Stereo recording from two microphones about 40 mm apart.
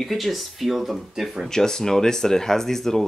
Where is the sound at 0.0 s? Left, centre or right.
Centre.